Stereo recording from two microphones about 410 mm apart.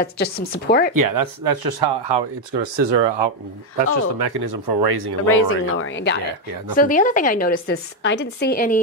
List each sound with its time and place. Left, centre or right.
0.0 s a woman's voice: left
0.9 s speech: right
4.2 s speech: right
5.3 s a woman's voice: left